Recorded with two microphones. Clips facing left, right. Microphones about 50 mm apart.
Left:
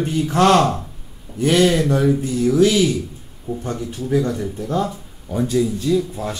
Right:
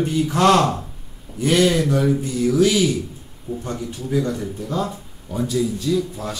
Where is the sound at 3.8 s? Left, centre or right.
Left.